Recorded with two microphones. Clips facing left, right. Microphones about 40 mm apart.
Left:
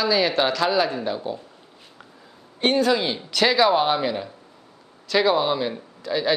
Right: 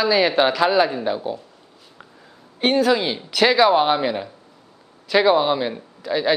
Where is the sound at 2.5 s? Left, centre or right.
Centre.